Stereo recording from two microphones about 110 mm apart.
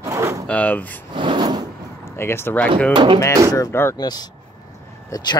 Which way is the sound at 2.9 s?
50° right (ahead or behind).